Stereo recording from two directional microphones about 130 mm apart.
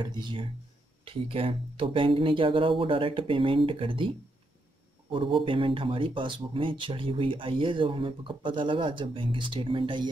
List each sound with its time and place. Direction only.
0.0 s speech: 35° right (ahead or behind)
1.0 s speech: 45° right (ahead or behind)
5.1 s speech: 40° right (ahead or behind)